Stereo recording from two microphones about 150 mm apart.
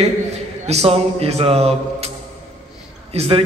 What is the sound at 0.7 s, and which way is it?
A man's voice, 45° right (ahead or behind).